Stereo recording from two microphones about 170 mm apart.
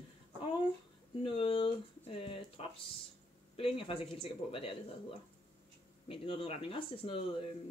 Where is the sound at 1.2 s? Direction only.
30° left (ahead or behind).